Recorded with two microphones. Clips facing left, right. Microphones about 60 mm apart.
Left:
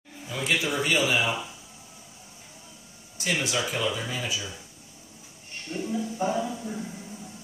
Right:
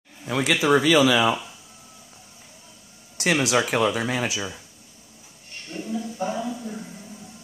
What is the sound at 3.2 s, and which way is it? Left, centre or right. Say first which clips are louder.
Speech: right 7 dB; right.